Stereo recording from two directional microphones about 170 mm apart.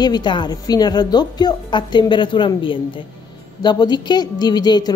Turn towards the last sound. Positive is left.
turn(degrees=25)  # may be behind; listen again after turning